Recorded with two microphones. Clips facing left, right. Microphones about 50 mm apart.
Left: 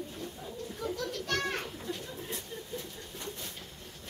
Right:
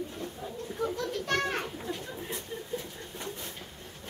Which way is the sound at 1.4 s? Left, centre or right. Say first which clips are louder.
Right 3 dB; centre.